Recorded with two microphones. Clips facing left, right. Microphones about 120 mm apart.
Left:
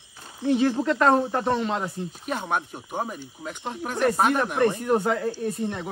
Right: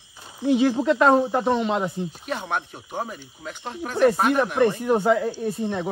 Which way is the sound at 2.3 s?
5° left (ahead or behind).